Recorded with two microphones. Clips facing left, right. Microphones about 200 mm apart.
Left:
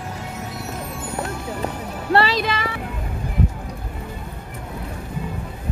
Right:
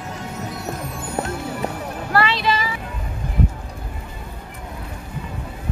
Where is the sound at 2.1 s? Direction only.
30° left (ahead or behind).